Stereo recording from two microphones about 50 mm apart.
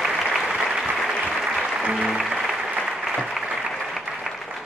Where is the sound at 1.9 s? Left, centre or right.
Centre.